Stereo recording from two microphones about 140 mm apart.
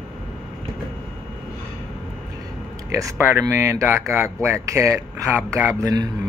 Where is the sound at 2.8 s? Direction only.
20° right (ahead or behind).